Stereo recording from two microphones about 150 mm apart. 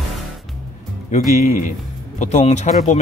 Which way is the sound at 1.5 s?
55° left (ahead or behind).